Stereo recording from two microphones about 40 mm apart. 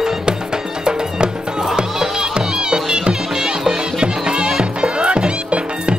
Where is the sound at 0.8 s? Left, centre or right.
Right.